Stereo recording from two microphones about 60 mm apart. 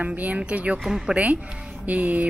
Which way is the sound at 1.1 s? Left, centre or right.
Right.